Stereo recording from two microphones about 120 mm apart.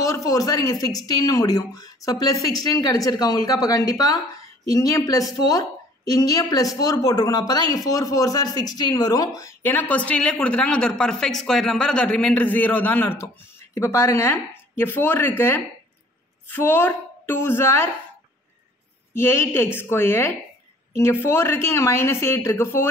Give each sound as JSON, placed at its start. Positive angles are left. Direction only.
{"t": 0.0, "sound": "a woman's voice", "side_deg": 30}
{"t": 19.1, "sound": "a woman's voice", "side_deg": 20}